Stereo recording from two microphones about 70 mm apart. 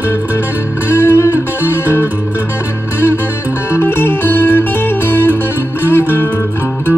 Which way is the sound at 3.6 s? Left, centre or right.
Left.